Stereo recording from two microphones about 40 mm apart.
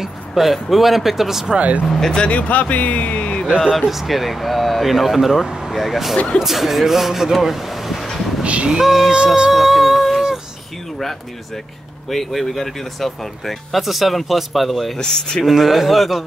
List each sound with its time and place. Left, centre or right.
0.3 s speech: centre
1.9 s speech: centre
2.1 s speech: left
3.7 s speech: centre
8.6 s speech: centre
9.1 s speech: right
9.5 s a sound: centre
12.1 s speech: centre
15.0 s speech: centre
15.4 s speech: centre